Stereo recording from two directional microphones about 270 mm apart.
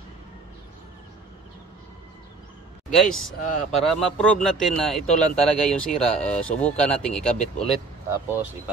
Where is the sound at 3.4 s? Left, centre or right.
Left.